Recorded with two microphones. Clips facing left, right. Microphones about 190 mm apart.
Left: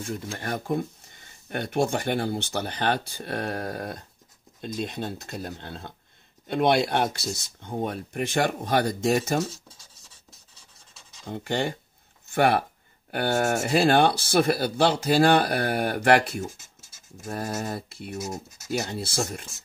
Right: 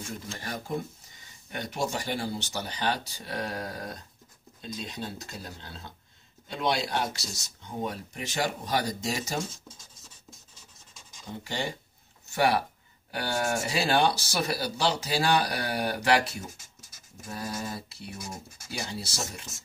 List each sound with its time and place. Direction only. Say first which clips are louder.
0.4 s speech: left 5 dB; 55° left (ahead or behind)
11.2 s speech: left 6 dB; 55° left (ahead or behind)
17.6 s speech: left 5 dB; 55° left (ahead or behind)
18.1 s speech: left 8 dB; 25° left (ahead or behind)
18.7 s speech: left 7 dB; 55° left (ahead or behind)